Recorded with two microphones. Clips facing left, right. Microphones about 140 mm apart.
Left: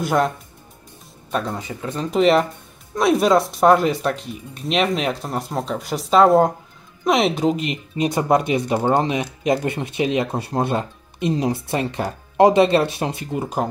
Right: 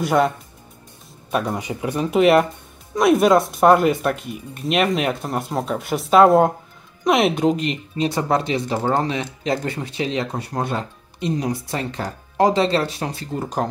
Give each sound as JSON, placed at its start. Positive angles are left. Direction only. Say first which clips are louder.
{"t": 0.0, "sound": "speech", "louder": "right 1 dB", "side_deg": 0}
{"t": 1.3, "sound": "speech", "louder": "right 2 dB", "side_deg": -10}
{"t": 8.0, "sound": "speech", "louder": "left 2 dB", "side_deg": 20}
{"t": 13.3, "sound": "speech", "louder": "right 1 dB", "side_deg": 10}